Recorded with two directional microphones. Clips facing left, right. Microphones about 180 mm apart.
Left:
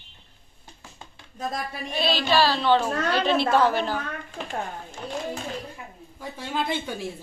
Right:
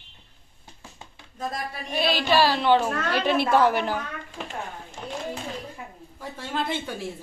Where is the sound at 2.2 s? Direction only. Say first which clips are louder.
Right 1 dB; 15° right (ahead or behind).